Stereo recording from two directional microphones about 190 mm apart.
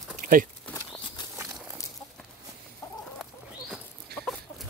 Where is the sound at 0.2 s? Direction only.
45° right (ahead or behind).